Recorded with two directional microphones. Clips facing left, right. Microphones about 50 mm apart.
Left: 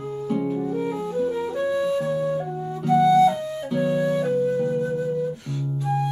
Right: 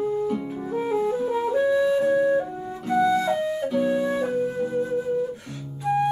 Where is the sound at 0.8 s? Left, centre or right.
Right.